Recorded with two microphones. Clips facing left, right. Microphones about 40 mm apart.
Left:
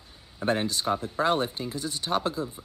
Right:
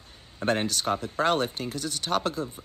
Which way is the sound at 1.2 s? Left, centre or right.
Right.